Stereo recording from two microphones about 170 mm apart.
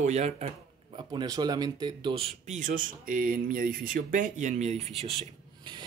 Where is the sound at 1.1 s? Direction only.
25° right (ahead or behind); by 5.1 s 40° right (ahead or behind).